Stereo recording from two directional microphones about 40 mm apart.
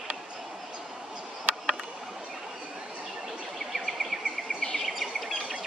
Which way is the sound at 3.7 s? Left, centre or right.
Centre.